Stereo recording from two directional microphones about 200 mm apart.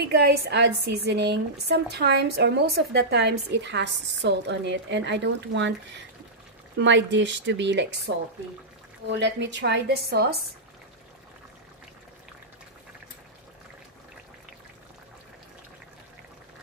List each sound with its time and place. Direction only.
0.1 s speech: 55° right (ahead or behind)
6.8 s speech: 65° right (ahead or behind)
9.2 s speech: 60° right (ahead or behind)